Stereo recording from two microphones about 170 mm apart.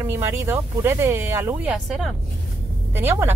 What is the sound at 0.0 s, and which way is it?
Speech, 15° right (ahead or behind).